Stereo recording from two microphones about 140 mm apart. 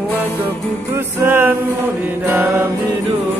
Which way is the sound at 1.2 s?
15° right (ahead or behind).